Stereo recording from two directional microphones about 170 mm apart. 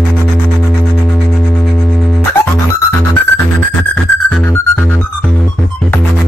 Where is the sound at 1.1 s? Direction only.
Centre (ahead or behind).